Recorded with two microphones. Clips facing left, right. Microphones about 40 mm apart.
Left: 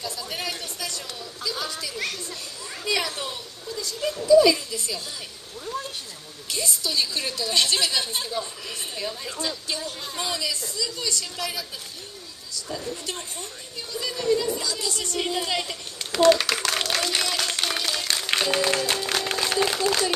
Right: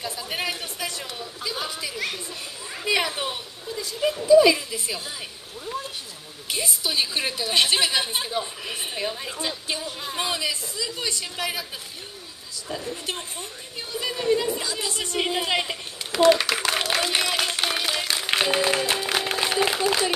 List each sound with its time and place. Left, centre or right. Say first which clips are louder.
0.0 s a sound: right 2 dB; right
2.8 s a woman's voice: right 3 dB; right
16.1 s clapping: even; centre
18.2 s music: right 1 dB; right